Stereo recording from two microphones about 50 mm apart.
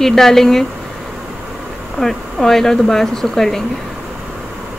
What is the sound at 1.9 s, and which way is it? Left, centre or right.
A woman's voice, centre.